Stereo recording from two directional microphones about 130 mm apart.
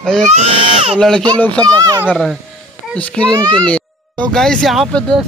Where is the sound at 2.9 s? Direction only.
10° left (ahead or behind).